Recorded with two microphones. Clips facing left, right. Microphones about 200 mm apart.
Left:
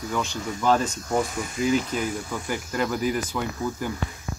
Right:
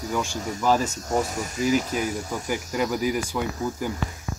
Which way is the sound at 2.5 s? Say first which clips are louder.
Right 1 dB; 10° right (ahead or behind).